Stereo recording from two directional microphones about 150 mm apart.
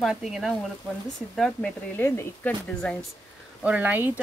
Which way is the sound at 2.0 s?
15° left (ahead or behind).